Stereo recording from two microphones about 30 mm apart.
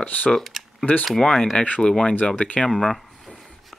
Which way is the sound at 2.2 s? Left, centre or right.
Left.